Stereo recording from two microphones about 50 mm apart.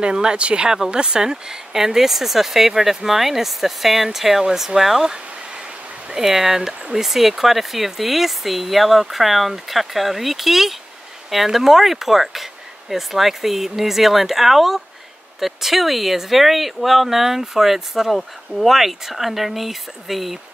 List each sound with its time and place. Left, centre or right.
0.0 s speech: centre